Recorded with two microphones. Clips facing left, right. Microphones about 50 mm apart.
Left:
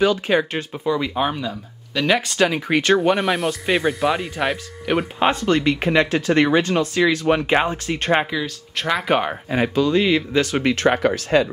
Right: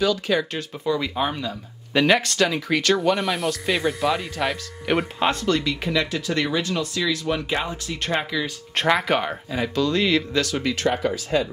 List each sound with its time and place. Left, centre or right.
0.0 s speech: left
0.8 s speech: centre
2.3 s speech: centre
3.0 s speech: centre
5.2 s speech: centre
5.5 s speech: left
8.8 s speech: centre
9.1 s speech: centre
10.4 s speech: left